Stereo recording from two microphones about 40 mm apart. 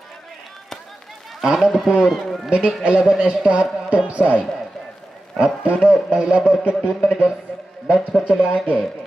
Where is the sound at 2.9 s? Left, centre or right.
Centre.